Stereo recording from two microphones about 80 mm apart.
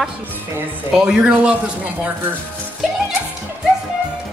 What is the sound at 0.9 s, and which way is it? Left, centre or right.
Speech, centre.